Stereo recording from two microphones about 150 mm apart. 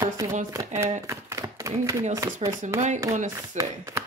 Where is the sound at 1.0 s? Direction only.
20° right (ahead or behind).